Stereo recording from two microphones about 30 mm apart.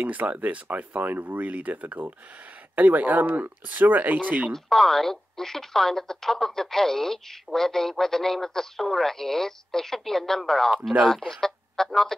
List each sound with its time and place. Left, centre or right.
0.0 s speech: right
0.7 s speech: right
4.5 s speech: centre